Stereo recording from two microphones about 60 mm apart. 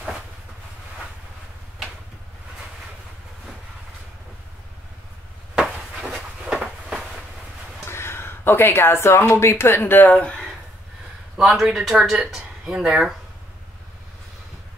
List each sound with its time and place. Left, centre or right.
5.6 s a sound: centre
7.9 s speech: left
10.1 s speech: left
11.3 s speech: centre